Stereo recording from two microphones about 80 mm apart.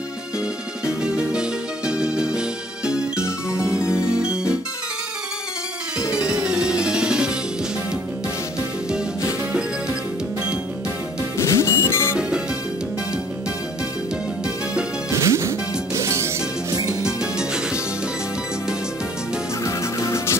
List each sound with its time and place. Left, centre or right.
0.8 s music: centre
6.1 s music: centre
11.3 s music: left
14.4 s music: centre
15.1 s music: right
17.0 s music: centre
19.6 s music: left